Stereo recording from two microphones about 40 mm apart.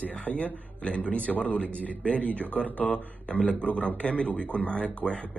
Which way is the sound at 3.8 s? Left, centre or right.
Left.